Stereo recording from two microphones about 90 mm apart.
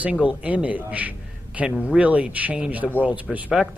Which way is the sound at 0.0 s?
15° right (ahead or behind).